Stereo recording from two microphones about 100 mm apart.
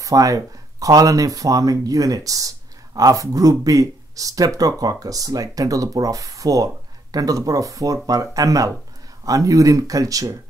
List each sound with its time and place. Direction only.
0.0 s speech: 35° right (ahead or behind)